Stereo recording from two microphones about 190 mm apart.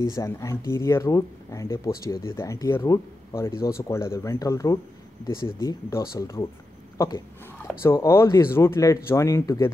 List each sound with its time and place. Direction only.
0.1 s speech: 15° left (ahead or behind)
7.5 s speech: 10° left (ahead or behind)